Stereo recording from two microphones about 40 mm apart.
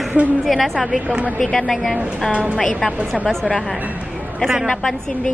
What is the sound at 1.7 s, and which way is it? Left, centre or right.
Speech, centre.